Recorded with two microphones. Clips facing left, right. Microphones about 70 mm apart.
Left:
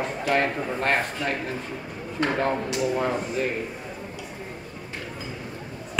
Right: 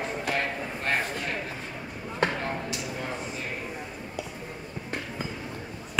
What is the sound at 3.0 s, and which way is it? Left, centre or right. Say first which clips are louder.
Speech: left 9 dB; left.